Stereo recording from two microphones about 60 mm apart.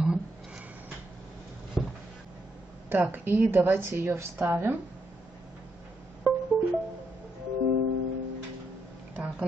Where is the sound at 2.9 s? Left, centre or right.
Right.